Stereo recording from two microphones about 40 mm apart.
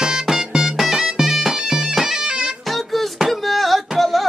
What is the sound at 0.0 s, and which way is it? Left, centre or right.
Music, centre.